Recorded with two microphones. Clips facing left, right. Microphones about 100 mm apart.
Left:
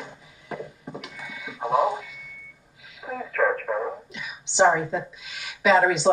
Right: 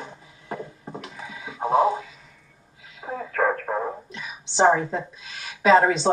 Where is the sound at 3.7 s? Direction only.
30° right (ahead or behind).